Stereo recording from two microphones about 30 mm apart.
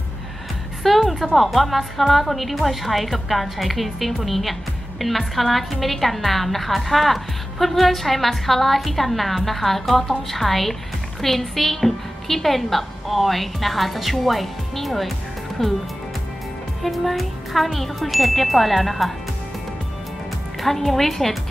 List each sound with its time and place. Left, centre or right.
0.8 s a woman's voice: centre
16.8 s a woman's voice: centre
20.6 s speech: centre